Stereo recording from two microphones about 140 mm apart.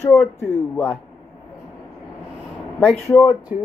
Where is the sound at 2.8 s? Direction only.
10° left (ahead or behind).